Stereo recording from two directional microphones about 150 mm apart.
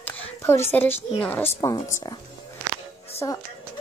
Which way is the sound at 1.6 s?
25° left (ahead or behind).